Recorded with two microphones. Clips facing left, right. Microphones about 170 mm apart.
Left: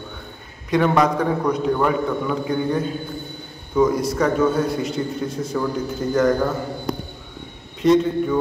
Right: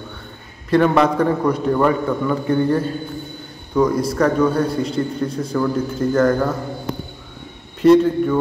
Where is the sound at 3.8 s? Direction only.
Centre (ahead or behind).